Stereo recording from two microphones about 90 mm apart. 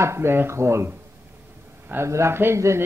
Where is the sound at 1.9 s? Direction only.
30° right (ahead or behind).